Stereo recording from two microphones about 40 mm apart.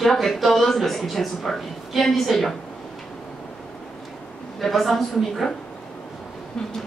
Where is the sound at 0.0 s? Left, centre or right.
Centre.